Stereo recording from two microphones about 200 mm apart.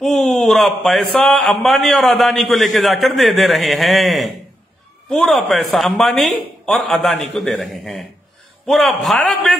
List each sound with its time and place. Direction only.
0.0 s a man's voice: centre (ahead or behind)